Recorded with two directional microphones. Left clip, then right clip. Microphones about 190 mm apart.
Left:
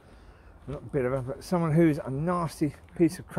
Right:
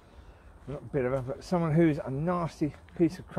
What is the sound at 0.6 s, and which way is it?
Speech, 10° left (ahead or behind).